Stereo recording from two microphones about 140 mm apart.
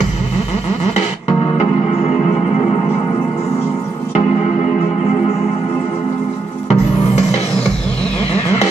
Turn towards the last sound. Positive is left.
turn(degrees=50)  # may be behind; listen again after turning